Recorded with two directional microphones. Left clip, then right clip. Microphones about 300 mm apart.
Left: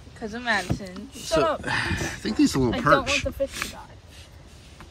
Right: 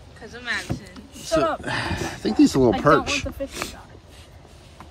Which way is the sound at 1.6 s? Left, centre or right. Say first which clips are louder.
Even; centre.